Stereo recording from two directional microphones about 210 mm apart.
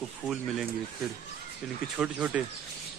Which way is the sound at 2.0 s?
5° right (ahead or behind).